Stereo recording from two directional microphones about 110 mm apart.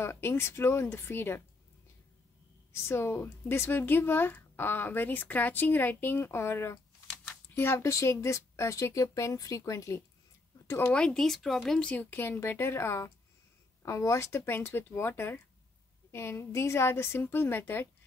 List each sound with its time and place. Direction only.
0.0 s speech: 20° left (ahead or behind)
2.7 s speech: 25° left (ahead or behind)
10.8 s speech: 10° left (ahead or behind)
11.9 s speech: 15° left (ahead or behind)